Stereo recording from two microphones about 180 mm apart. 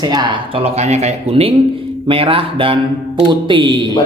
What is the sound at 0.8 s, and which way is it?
Speech, 40° right (ahead or behind).